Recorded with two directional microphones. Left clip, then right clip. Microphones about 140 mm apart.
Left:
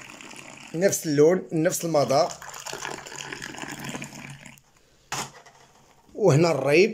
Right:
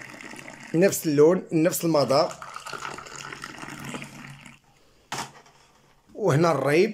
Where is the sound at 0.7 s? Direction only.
10° right (ahead or behind).